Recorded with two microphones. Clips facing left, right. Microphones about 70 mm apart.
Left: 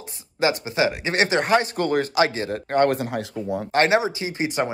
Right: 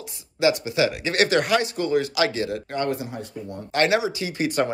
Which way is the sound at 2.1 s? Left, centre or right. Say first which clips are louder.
Left 2 dB; left.